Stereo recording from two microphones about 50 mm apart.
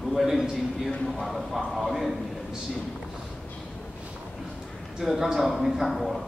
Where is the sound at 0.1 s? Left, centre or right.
Centre.